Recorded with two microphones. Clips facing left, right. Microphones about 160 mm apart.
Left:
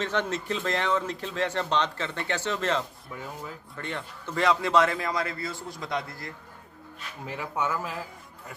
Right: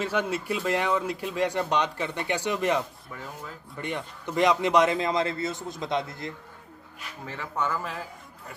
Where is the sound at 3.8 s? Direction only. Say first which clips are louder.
Right 3 dB; 15° right (ahead or behind).